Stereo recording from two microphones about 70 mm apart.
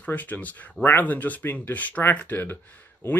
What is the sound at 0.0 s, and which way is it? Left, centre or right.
Speech, left.